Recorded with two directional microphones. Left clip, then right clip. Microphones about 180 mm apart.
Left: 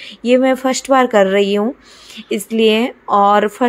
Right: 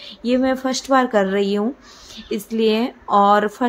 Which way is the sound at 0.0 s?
5° left (ahead or behind).